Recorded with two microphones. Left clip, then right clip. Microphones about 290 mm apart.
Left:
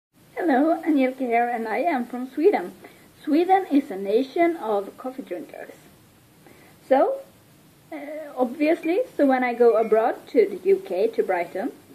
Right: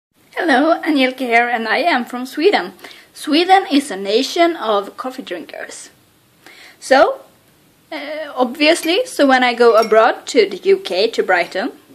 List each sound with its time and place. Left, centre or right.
0.3 s a woman's voice: right
7.9 s a woman's voice: right